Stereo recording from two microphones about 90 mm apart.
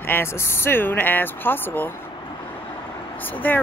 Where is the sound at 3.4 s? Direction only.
20° left (ahead or behind).